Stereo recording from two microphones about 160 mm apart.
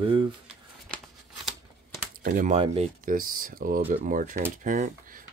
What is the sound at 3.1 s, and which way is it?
Speech, 60° right (ahead or behind).